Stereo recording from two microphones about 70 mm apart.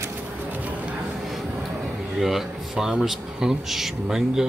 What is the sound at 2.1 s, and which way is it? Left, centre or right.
Speech, centre.